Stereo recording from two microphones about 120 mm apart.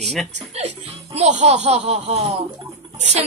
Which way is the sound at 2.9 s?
70° right (ahead or behind).